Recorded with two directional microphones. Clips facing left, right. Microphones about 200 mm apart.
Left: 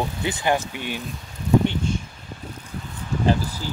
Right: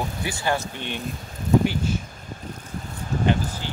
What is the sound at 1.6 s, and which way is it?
Speech, 5° right (ahead or behind).